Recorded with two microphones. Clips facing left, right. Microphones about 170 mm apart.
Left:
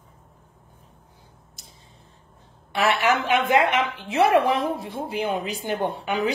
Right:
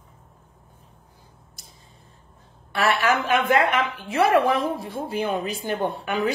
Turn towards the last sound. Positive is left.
turn(degrees=20)  # may be behind; listen again after turning